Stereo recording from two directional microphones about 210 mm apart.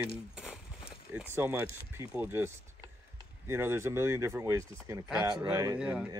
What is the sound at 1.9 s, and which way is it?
Speech, 10° right (ahead or behind).